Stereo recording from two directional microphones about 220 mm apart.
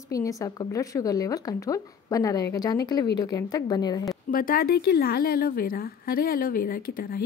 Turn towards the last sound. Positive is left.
turn(degrees=40)  # may be behind; listen again after turning